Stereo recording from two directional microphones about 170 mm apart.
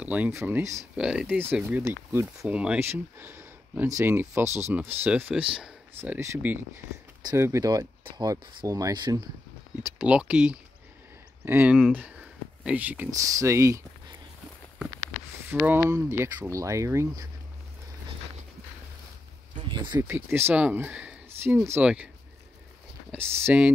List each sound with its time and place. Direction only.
0.0 s speech: 10° right (ahead or behind)
0.6 s speech: 15° right (ahead or behind)
0.9 s speech: 5° right (ahead or behind); by 9.2 s 25° right (ahead or behind)
9.8 s speech: 10° right (ahead or behind)
15.4 s speech: 10° right (ahead or behind)
19.7 s speech: 25° right (ahead or behind)
20.0 s speech: 15° right (ahead or behind)
23.1 s speech: 15° right (ahead or behind)